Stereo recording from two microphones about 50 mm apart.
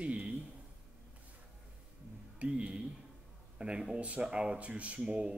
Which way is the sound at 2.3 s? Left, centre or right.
Right.